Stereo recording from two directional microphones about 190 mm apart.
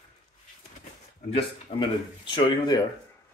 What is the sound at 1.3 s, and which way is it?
Speech, 25° left (ahead or behind).